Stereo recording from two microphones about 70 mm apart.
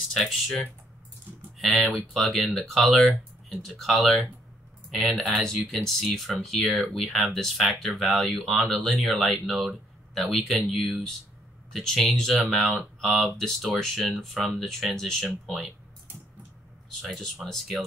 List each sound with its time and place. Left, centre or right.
0.1 s speech: centre
5.4 s speech: centre
17.0 s speech: centre